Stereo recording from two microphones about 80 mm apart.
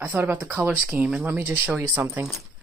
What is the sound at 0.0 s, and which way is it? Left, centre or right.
Speech, right.